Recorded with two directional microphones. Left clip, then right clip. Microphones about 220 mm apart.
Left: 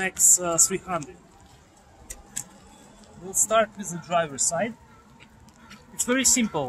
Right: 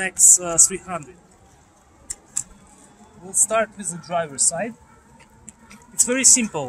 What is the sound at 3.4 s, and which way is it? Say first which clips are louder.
Speech: right 1 dB; 10° right (ahead or behind).